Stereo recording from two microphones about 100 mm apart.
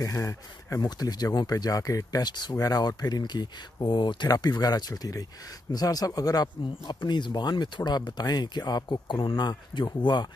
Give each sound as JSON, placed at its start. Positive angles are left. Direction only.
{"t": 0.0, "sound": "speech", "side_deg": 30}